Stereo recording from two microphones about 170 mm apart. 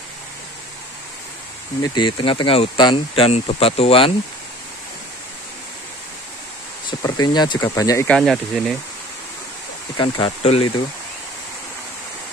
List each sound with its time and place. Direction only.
1.8 s speech: 30° left (ahead or behind)
6.9 s speech: 25° left (ahead or behind)
8.1 s speech: centre (ahead or behind)
9.9 s speech: 30° left (ahead or behind)